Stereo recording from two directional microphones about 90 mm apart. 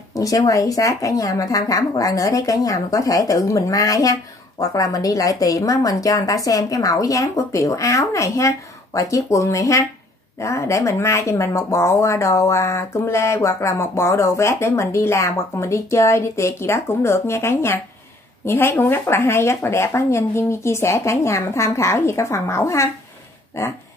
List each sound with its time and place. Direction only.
0.1 s speech: 40° left (ahead or behind)